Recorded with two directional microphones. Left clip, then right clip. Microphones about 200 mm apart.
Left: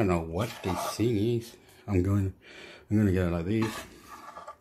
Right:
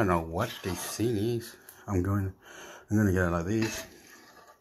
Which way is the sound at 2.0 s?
30° left (ahead or behind).